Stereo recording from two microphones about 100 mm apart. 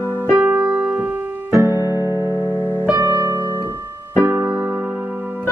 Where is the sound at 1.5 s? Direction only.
30° right (ahead or behind).